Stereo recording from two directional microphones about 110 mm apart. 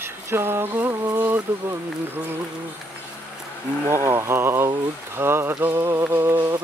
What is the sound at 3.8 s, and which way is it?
Speech, 25° right (ahead or behind).